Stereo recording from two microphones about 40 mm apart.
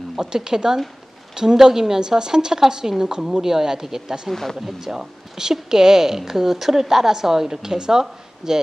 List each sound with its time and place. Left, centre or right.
0.1 s a woman's voice: centre
4.3 s speech: centre
4.6 s a woman's voice: centre